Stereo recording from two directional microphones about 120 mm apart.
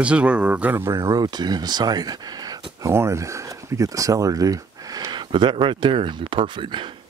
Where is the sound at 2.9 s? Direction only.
20° right (ahead or behind); by 6.9 s 40° right (ahead or behind).